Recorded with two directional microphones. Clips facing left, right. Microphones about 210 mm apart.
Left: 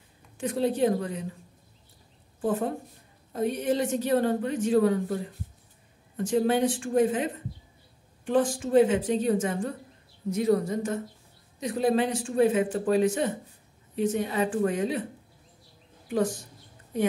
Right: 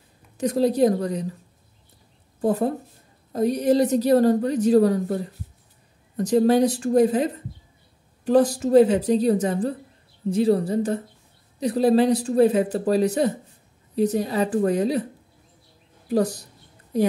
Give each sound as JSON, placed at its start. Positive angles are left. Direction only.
{"t": 0.4, "sound": "speech", "side_deg": -40}
{"t": 2.4, "sound": "speech", "side_deg": -40}
{"t": 6.1, "sound": "speech", "side_deg": -40}
{"t": 16.1, "sound": "speech", "side_deg": -40}